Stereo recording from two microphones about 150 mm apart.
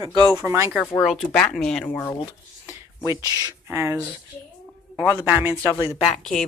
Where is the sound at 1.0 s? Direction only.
Centre (ahead or behind).